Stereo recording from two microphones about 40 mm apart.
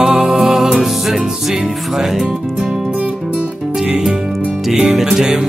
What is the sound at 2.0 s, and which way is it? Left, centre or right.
Speech, centre.